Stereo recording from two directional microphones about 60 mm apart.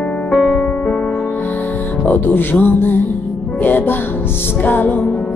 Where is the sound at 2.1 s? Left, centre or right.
Left.